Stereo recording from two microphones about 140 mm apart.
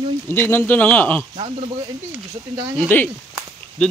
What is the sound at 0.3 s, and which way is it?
Speech, 15° left (ahead or behind).